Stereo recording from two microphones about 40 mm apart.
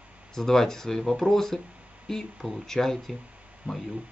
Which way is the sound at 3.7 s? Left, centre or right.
Right.